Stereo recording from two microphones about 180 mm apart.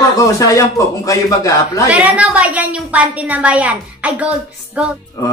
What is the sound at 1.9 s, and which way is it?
A woman's voice, 5° right (ahead or behind).